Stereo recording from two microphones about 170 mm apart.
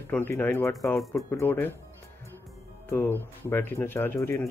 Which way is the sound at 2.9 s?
15° left (ahead or behind).